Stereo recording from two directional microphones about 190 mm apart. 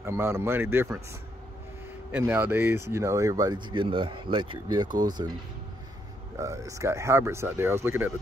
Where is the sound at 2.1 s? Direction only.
10° right (ahead or behind).